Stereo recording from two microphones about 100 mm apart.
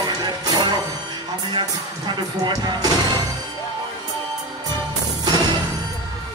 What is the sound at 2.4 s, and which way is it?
Speech, 45° right (ahead or behind).